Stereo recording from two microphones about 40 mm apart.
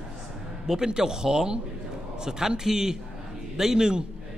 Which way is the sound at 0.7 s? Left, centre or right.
Centre.